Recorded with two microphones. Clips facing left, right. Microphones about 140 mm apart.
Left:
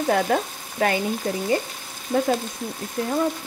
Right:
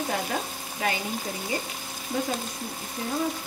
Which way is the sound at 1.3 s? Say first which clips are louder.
Left 8 dB; 55° left (ahead or behind).